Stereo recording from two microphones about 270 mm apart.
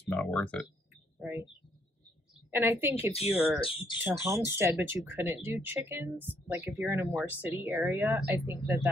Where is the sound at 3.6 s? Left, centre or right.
Centre.